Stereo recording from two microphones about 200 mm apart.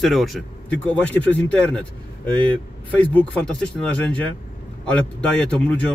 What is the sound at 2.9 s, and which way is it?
Speech, 5° left (ahead or behind).